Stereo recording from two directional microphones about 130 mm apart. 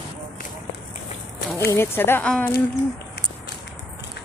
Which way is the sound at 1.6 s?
20° left (ahead or behind).